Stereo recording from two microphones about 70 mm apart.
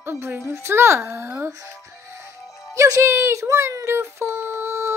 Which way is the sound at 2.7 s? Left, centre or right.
Right.